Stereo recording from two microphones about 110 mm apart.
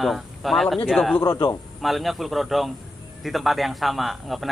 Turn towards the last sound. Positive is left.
turn(degrees=0)  # may be behind; listen again after turning